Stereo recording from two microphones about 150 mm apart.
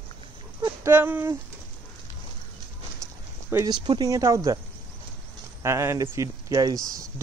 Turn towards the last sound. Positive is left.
turn(degrees=-20)  # may be behind; listen again after turning